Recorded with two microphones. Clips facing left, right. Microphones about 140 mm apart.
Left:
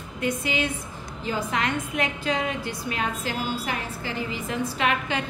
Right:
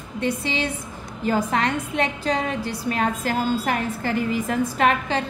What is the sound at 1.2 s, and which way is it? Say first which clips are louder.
Speech: right 6 dB; 45° right (ahead or behind).